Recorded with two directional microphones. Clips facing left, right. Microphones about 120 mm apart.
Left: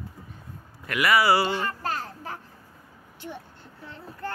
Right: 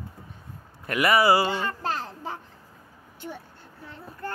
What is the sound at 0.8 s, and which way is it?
Speech, 35° right (ahead or behind).